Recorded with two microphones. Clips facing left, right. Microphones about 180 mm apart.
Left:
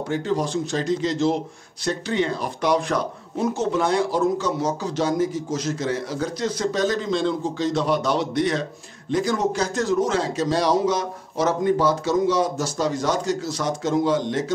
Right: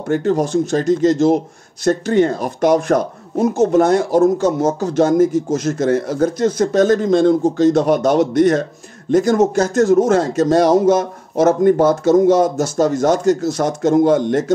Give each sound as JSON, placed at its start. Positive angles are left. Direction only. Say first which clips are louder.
{"t": 0.1, "sound": "speech", "louder": "right 8 dB", "side_deg": -50}